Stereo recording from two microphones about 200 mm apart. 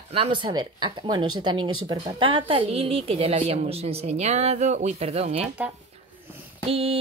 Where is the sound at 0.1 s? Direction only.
25° right (ahead or behind).